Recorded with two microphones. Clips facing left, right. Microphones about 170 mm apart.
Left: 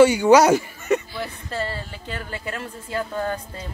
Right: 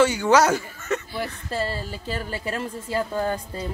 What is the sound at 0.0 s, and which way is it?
Speech, 10° left (ahead or behind).